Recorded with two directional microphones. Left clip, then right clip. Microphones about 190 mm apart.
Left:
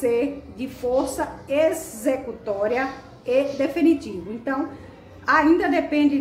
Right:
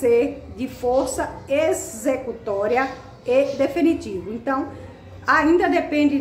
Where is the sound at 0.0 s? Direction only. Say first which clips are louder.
Right 4 dB; 10° right (ahead or behind).